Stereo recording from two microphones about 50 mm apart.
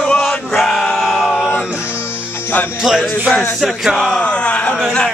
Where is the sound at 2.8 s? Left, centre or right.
Centre.